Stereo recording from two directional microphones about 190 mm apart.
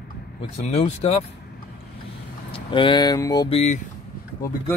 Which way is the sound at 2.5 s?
25° left (ahead or behind).